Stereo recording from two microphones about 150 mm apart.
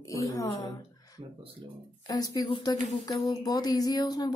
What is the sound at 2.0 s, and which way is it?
Speech, 25° left (ahead or behind).